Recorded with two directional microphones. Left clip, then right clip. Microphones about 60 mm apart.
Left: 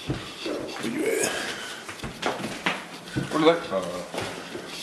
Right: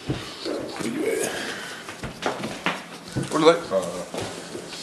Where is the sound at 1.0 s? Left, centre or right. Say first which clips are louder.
Even; centre.